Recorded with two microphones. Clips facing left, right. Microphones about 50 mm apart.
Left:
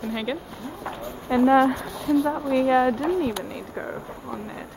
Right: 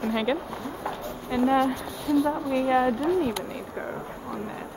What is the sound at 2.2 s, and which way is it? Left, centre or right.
Speech, centre.